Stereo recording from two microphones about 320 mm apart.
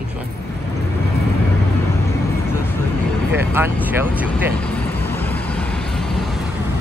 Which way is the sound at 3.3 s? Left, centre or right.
Centre.